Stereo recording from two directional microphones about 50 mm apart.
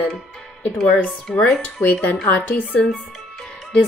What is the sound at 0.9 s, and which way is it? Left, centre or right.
Speech, left.